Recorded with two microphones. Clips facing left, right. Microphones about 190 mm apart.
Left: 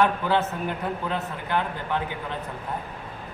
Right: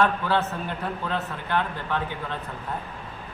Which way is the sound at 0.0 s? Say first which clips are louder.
Left 1 dB; 15° left (ahead or behind).